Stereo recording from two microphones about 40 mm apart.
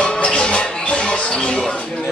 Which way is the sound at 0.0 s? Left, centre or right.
Left.